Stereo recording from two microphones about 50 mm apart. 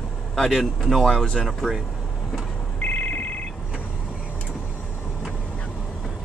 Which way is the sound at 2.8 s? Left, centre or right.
Left.